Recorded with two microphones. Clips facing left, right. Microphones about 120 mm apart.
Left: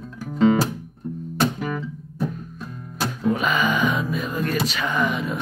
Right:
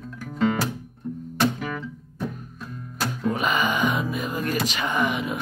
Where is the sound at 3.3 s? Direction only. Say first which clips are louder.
Right 1 dB; 15° right (ahead or behind).